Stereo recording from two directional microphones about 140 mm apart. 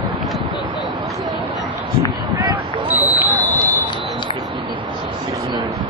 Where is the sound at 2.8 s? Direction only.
10° right (ahead or behind).